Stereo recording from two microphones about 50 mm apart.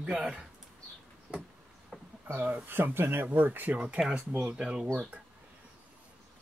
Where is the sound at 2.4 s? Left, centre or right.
Right.